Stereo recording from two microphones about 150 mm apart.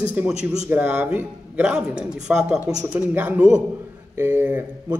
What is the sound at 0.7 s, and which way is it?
A man's voice, 10° right (ahead or behind).